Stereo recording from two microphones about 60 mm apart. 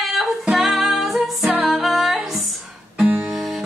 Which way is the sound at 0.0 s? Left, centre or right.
Centre.